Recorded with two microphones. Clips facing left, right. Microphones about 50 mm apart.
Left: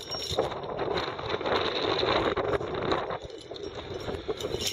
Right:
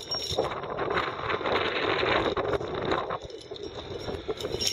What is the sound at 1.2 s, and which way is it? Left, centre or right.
Vehicle, right.